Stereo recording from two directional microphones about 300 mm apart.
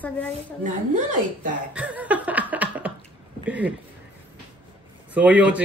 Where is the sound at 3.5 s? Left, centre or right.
Centre.